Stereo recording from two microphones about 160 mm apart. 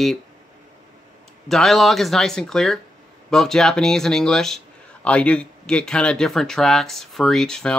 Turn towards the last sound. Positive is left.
turn(degrees=5)  # may be behind; listen again after turning